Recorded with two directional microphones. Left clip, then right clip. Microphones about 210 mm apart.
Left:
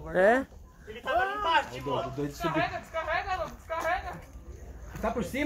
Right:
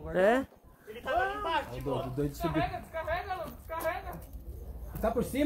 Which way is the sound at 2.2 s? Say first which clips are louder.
Right 1 dB; 60° right (ahead or behind).